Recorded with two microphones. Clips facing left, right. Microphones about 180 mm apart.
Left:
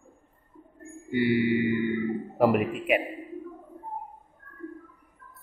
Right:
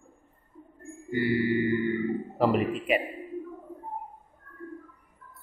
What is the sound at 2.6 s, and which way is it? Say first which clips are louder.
Speech: even; centre (ahead or behind).